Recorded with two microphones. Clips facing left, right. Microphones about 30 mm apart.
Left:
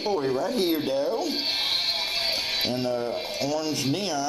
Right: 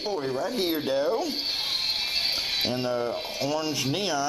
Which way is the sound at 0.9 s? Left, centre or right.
Centre.